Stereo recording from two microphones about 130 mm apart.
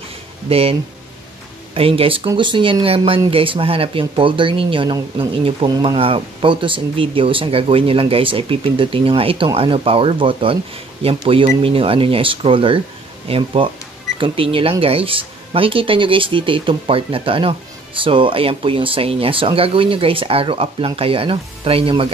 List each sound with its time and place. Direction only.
0.5 s speech: 50° right (ahead or behind)